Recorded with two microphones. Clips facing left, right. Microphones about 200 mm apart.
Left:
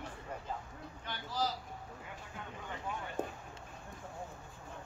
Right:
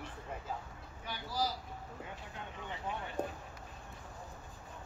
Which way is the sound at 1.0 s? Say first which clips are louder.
Even; 10° right (ahead or behind).